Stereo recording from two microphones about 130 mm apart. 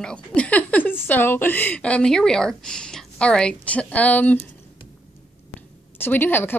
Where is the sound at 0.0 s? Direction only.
5° left (ahead or behind).